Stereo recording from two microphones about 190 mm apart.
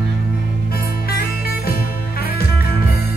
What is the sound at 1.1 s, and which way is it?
Music, 50° left (ahead or behind).